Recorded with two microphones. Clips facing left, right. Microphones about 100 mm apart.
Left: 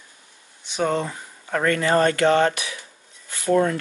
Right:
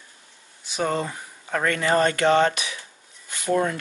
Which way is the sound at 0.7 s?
5° right (ahead or behind).